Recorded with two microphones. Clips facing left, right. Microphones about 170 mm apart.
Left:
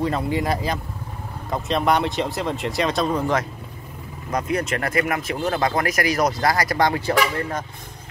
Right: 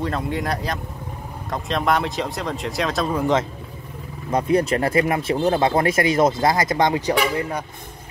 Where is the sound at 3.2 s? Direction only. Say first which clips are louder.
Right 3 dB; 20° right (ahead or behind).